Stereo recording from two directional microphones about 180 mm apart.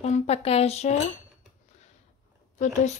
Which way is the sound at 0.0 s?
35° left (ahead or behind).